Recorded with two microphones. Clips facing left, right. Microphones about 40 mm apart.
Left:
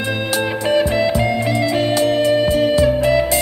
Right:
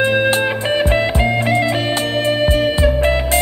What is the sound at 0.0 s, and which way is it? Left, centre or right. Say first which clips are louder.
Music: right 5 dB; right.